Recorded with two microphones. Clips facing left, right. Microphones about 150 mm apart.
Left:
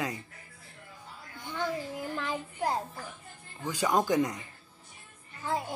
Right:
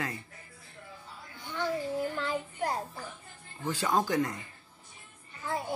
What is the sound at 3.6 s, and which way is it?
Speech, 15° left (ahead or behind).